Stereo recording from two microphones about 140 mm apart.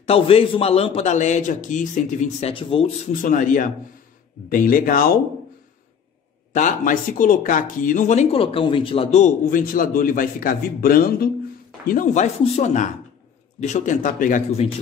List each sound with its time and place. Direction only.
0.0 s a man's voice: 45° left (ahead or behind); by 2.5 s 60° left (ahead or behind)
2.5 s speech: 40° left (ahead or behind)
3.2 s a man's voice: 70° left (ahead or behind)
4.5 s speech: 85° left
6.5 s speech: 65° left (ahead or behind); by 9.3 s 50° left (ahead or behind)
9.5 s a man's voice: 80° left
11.9 s speech: 65° left (ahead or behind)